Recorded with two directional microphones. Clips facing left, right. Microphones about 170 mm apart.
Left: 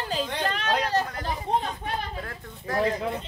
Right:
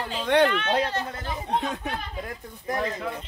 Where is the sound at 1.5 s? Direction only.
75° right (ahead or behind).